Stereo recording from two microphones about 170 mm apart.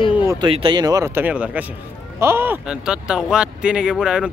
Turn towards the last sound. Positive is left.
turn(degrees=-5)  # may be behind; listen again after turning